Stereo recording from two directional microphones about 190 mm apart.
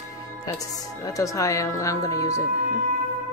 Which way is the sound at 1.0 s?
15° left (ahead or behind).